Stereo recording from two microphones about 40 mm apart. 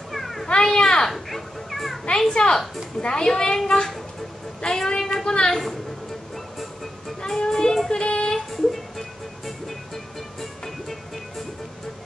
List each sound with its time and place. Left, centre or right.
0.1 s children playing: centre
0.7 s a sound: centre
1.1 s dog: centre
2.0 s a child's voice: centre
6.3 s music: centre
7.2 s a child's voice: centre
7.9 s a sound: left
8.4 s a sound: centre
10.4 s music: centre